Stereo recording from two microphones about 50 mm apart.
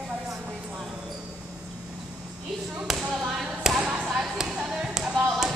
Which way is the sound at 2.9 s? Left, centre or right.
Centre.